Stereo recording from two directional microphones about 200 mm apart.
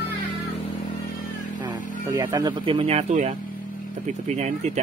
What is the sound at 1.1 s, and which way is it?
Vehicle, 40° left (ahead or behind).